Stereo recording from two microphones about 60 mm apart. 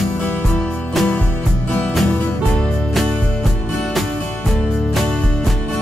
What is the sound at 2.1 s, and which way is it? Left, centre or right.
Music, centre.